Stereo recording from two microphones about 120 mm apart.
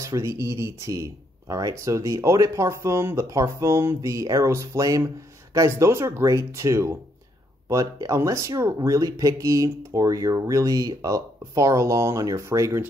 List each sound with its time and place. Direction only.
0.0 s speech: 25° right (ahead or behind)